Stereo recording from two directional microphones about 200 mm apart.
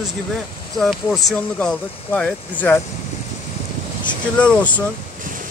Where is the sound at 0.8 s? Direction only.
Centre (ahead or behind).